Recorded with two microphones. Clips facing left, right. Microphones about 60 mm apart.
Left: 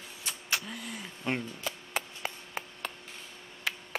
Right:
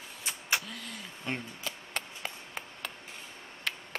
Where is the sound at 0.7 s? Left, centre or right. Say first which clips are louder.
Left 2 dB; centre.